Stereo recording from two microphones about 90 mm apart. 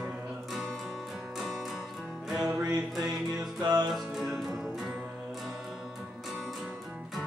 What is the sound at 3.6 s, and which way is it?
Music, 45° right (ahead or behind).